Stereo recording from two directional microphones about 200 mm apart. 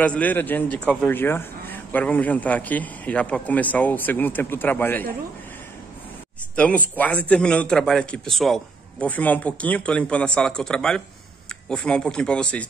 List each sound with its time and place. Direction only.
0.0 s a man's voice: 5° left (ahead or behind)
6.5 s a man's voice: 5° left (ahead or behind)